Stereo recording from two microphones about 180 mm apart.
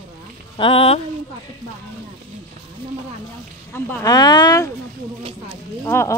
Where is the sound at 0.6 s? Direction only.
30° left (ahead or behind).